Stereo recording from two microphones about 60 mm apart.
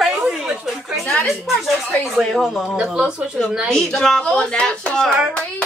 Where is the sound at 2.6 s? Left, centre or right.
Centre.